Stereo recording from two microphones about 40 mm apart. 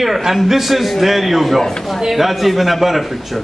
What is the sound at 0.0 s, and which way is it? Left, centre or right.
A man's voice, centre.